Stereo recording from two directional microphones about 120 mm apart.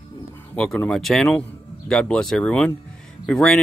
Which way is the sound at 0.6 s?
5° left (ahead or behind).